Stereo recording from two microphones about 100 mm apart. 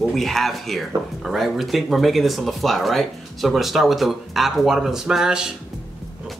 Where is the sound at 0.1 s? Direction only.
Centre (ahead or behind).